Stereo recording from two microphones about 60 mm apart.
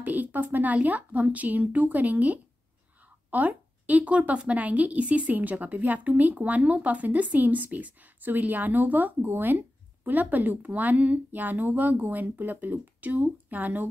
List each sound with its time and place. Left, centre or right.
0.0 s a woman's voice: right